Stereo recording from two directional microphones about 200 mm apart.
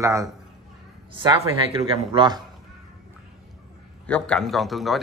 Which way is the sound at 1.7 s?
30° right (ahead or behind).